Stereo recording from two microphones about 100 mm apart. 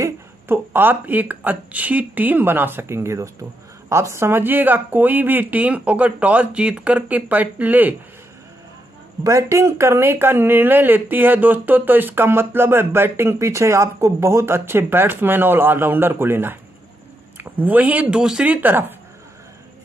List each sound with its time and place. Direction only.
0.0 s speech: 20° right (ahead or behind)
9.2 s speech: 30° right (ahead or behind)